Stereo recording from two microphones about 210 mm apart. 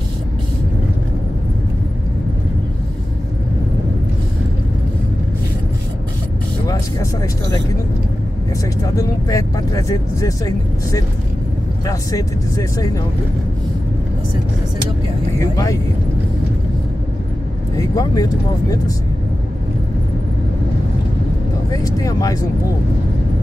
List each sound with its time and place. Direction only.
8.9 s vehicle: 15° left (ahead or behind)
11.8 s speech: 15° left (ahead or behind)
15.3 s vehicle: 15° left (ahead or behind)
17.7 s speech: 15° left (ahead or behind)
21.7 s speech: 15° left (ahead or behind)